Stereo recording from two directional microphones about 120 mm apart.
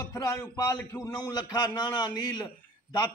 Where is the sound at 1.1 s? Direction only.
35° left (ahead or behind).